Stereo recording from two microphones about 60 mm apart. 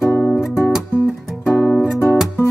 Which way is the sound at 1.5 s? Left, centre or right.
Left.